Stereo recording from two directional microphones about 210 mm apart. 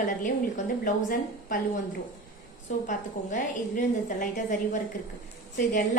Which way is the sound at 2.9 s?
35° left (ahead or behind).